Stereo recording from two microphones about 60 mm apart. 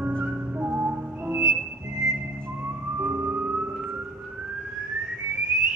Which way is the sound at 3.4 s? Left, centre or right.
Centre.